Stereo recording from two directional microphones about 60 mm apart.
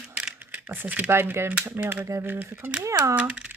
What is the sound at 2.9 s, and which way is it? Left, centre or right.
Speech, right.